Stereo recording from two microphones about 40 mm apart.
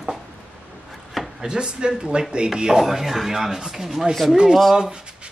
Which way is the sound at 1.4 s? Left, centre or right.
Right.